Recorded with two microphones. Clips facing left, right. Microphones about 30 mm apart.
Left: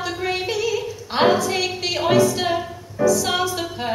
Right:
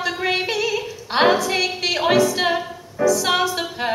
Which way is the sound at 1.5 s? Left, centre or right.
Centre.